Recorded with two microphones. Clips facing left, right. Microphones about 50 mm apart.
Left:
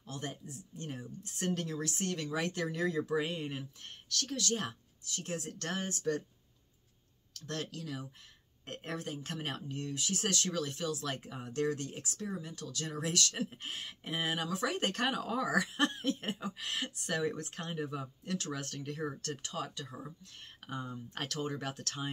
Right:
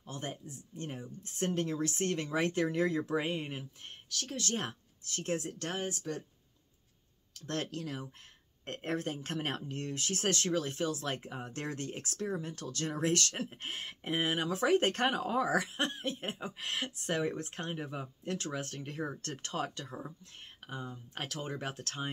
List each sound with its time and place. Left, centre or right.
0.0 s speech: right
4.4 s speech: right
5.6 s speech: centre
7.4 s speech: right
20.6 s speech: centre; by 22.1 s right